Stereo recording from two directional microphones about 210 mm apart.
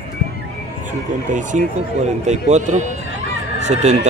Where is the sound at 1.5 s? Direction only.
35° right (ahead or behind).